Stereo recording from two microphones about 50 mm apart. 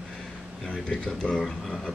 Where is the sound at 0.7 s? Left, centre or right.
Centre.